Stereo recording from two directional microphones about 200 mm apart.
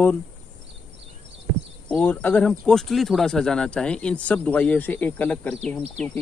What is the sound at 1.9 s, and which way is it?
Speech, 10° left (ahead or behind).